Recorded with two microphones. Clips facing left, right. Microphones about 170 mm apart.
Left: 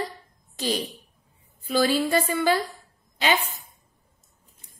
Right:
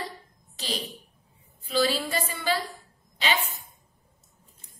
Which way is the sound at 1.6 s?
50° left (ahead or behind).